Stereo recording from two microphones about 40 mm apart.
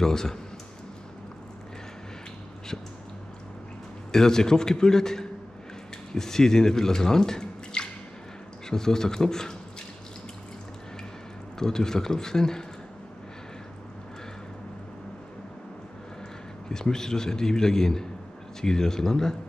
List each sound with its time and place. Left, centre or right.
0.0 s a man's voice: centre
4.1 s a man's voice: centre
11.6 s a man's voice: centre
16.6 s a man's voice: centre